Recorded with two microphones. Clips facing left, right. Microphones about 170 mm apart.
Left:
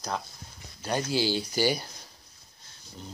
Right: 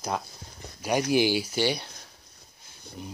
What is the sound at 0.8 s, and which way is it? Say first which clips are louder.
Speech: right 5 dB; 15° right (ahead or behind).